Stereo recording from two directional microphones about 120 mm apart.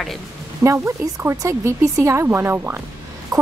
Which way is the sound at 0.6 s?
25° right (ahead or behind).